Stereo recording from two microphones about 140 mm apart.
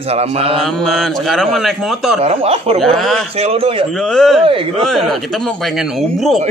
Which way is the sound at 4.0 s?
5° left (ahead or behind).